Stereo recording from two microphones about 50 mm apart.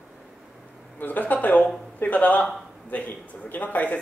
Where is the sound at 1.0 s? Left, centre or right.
Left.